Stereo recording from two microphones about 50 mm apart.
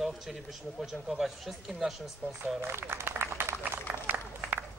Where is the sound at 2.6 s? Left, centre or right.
Right.